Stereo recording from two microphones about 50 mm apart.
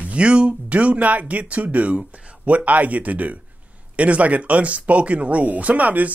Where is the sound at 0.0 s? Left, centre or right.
Right.